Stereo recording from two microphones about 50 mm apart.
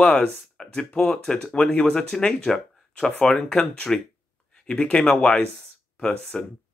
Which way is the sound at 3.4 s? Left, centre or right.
Centre.